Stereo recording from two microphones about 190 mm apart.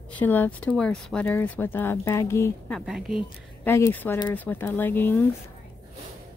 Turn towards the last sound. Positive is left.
turn(degrees=10)  # may be behind; listen again after turning